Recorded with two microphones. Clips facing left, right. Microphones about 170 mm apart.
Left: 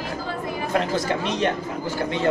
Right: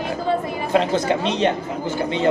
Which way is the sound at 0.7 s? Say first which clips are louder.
Right 5 dB; 25° right (ahead or behind).